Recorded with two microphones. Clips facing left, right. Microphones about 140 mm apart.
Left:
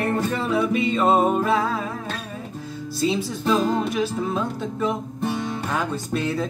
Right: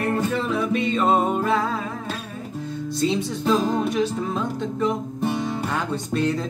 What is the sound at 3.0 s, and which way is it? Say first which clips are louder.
Music: even; 5° left (ahead or behind).